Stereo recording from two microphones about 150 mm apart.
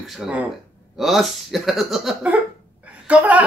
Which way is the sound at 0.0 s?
5° right (ahead or behind).